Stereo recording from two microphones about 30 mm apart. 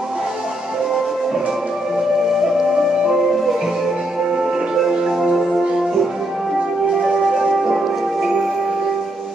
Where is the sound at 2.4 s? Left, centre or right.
Centre.